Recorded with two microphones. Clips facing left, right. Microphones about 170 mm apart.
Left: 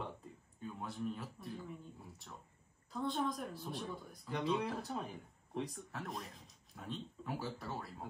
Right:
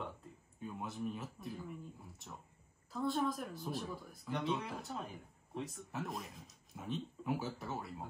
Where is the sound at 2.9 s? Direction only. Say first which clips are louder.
Right 2 dB; centre (ahead or behind).